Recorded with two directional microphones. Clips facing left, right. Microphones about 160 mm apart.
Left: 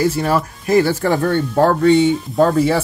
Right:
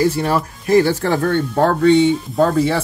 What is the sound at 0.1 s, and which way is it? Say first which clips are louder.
Speech: left 1 dB; centre (ahead or behind).